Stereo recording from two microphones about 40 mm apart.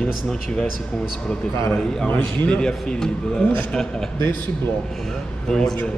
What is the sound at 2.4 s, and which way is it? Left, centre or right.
Speech, left.